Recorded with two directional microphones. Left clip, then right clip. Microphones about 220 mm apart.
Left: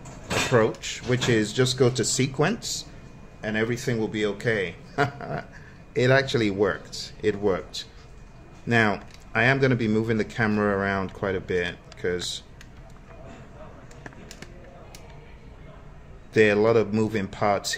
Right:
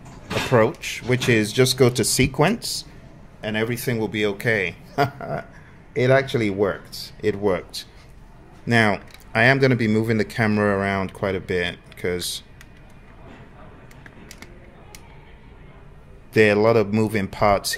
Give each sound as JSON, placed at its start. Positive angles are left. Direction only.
{"t": 0.5, "sound": "speech", "side_deg": -25}
{"t": 16.3, "sound": "speech", "side_deg": -20}